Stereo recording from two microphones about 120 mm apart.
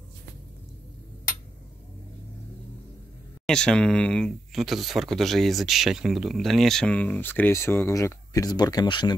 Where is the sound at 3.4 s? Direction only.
5° left (ahead or behind).